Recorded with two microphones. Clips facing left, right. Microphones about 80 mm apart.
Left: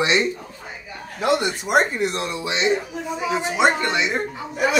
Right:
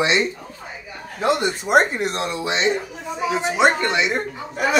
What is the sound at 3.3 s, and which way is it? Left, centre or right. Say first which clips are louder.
Speech: right 1 dB; right.